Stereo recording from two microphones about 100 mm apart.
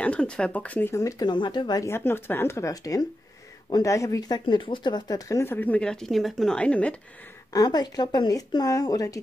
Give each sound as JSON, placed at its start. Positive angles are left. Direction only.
{"t": 0.0, "sound": "speech", "side_deg": 10}
{"t": 1.2, "sound": "speech", "side_deg": 50}
{"t": 1.9, "sound": "speech", "side_deg": 25}
{"t": 5.4, "sound": "speech", "side_deg": 20}
{"t": 7.5, "sound": "speech", "side_deg": 45}